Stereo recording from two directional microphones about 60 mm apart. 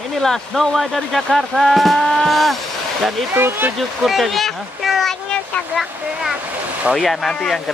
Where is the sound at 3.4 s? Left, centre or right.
Right.